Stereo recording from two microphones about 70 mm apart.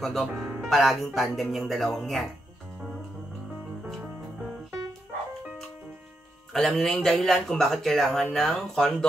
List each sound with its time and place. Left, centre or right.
0.0 s speech: centre
0.3 s speech: right
0.7 s speech: centre
6.5 s speech: centre